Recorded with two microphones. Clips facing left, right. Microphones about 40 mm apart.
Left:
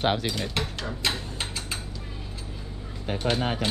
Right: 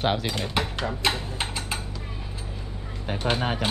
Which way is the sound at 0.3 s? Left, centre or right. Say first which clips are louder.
Right 2 dB; centre.